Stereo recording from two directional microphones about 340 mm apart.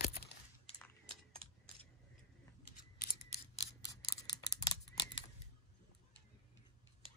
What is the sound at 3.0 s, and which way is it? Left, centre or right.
Scissors, centre.